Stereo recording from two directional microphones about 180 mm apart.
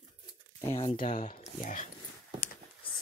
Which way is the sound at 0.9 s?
45° left (ahead or behind).